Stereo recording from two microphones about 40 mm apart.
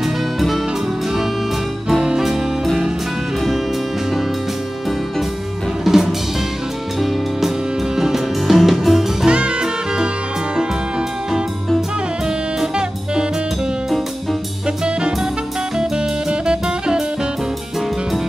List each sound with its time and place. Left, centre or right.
0.0 s music: centre
2.0 s music: centre
5.9 s music: centre
9.3 s jazz: right
12.5 s music: centre
15.8 s music: centre